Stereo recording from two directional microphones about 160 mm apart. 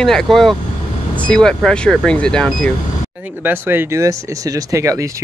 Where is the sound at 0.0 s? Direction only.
5° left (ahead or behind).